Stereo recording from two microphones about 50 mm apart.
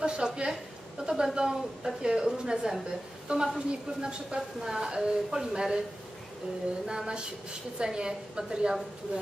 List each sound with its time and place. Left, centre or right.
0.0 s a woman's voice: centre
6.9 s a woman's voice: centre